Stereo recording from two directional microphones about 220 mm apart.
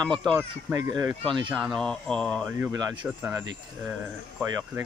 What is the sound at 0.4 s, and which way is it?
Speech, 15° right (ahead or behind).